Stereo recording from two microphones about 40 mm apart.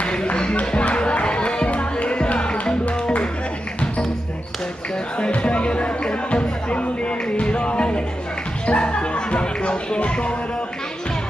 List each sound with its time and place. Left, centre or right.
0.0 s music: left
2.8 s music: left
5.2 s music: left